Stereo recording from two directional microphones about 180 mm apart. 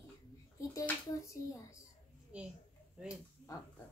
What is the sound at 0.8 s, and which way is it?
Speech, 15° left (ahead or behind).